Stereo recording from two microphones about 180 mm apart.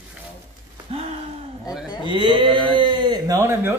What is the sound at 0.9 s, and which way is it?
Gasp, 35° right (ahead or behind).